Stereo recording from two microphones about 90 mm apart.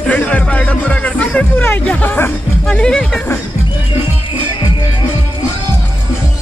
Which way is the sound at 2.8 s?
10° left (ahead or behind).